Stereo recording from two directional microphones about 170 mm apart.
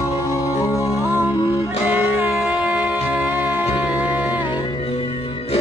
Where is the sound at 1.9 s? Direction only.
10° right (ahead or behind).